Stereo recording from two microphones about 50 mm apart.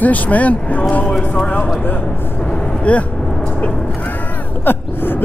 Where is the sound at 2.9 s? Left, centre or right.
Left.